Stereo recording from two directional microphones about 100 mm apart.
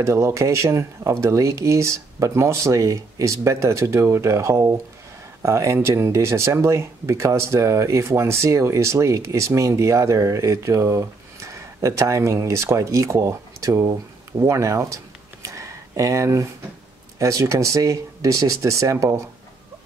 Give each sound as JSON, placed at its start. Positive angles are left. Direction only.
{"t": 0.0, "sound": "speech", "side_deg": -30}
{"t": 15.4, "sound": "a sound", "side_deg": -35}
{"t": 17.2, "sound": "speech", "side_deg": -30}